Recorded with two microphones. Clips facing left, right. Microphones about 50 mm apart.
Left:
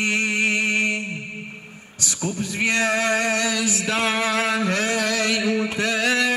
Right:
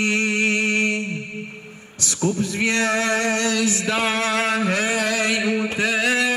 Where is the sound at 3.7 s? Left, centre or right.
Centre.